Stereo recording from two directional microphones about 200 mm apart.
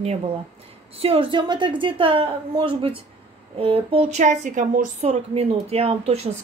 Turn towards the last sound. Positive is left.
turn(degrees=-30)  # may be behind; listen again after turning